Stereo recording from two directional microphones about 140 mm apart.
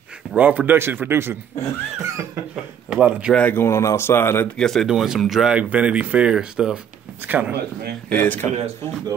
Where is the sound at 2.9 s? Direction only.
5° right (ahead or behind).